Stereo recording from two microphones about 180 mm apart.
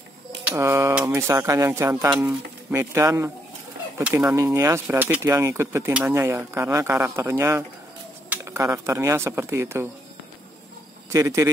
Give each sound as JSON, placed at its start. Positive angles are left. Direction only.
{"t": 0.4, "sound": "speech", "side_deg": -10}
{"t": 2.0, "sound": "speech", "side_deg": -5}
{"t": 2.7, "sound": "speech", "side_deg": -15}
{"t": 11.1, "sound": "speech", "side_deg": -15}